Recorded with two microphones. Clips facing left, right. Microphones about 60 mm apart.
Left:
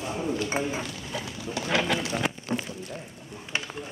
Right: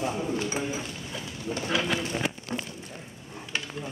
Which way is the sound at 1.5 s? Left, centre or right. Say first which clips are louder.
Left 2 dB; left.